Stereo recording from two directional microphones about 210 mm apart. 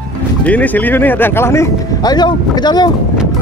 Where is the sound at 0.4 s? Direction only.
5° left (ahead or behind).